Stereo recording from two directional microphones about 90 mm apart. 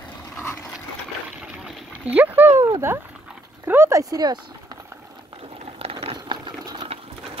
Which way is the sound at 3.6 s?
25° right (ahead or behind).